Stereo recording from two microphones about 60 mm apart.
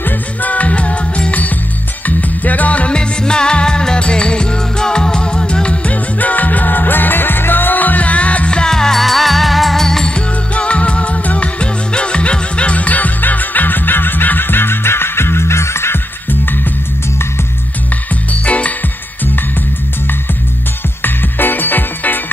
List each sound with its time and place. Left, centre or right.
0.0 s music: left
18.3 s music: left
21.0 s music: left